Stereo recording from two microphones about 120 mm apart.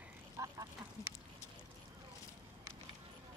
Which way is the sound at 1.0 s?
25° left (ahead or behind).